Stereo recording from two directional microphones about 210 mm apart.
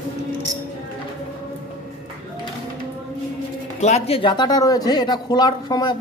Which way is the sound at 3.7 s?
30° left (ahead or behind).